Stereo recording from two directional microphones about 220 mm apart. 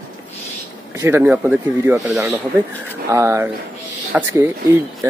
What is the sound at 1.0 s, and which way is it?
Speech, 10° right (ahead or behind).